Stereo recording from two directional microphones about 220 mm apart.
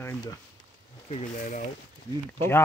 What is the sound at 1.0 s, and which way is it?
Speech, 30° left (ahead or behind).